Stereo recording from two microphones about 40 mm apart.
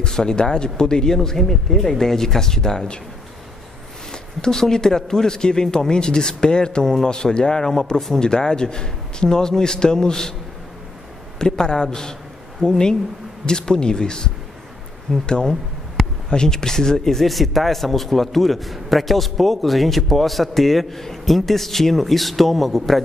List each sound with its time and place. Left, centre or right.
0.0 s a man's voice: centre
4.1 s a man's voice: centre
11.3 s a man's voice: centre
16.3 s speech: centre